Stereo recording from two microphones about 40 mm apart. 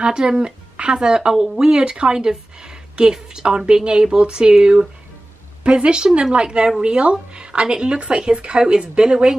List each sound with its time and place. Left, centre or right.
0.0 s a woman's voice: centre